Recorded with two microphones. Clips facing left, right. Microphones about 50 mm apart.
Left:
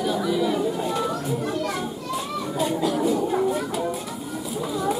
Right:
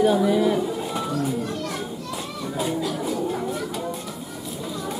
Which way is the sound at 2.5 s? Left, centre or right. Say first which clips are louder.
Left 3 dB; centre.